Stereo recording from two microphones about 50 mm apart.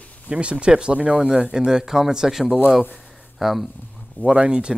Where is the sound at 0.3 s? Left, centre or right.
Right.